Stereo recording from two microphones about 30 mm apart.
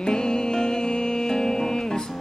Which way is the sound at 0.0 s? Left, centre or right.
Left.